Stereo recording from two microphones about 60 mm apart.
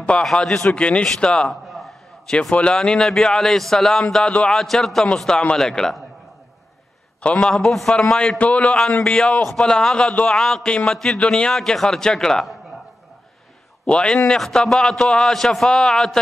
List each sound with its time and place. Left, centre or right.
0.2 s a man's voice: centre
1.5 s a sound: centre
2.5 s a man's voice: centre
7.3 s a man's voice: centre
13.8 s a man's voice: centre